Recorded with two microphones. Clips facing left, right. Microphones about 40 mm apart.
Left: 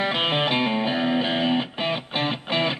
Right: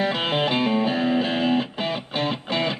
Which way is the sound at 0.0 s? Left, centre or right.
Left.